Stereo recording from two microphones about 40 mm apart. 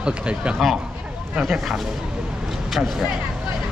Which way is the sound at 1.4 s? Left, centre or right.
Centre.